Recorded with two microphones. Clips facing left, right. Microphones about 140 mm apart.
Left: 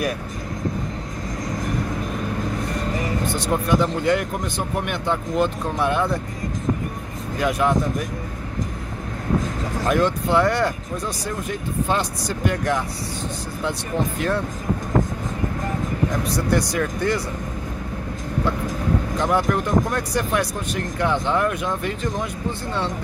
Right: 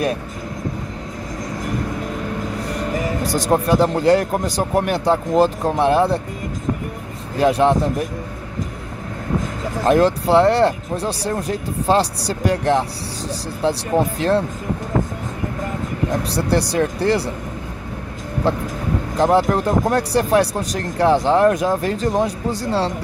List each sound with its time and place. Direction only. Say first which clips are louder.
3.3 s speech: right 5 dB; 40° right (ahead or behind)
7.3 s speech: right 6 dB; 30° right (ahead or behind)
9.8 s speech: right 6 dB; 35° right (ahead or behind)
16.4 s speech: right 4 dB; 30° right (ahead or behind)
19.1 s speech: right 7 dB; 35° right (ahead or behind)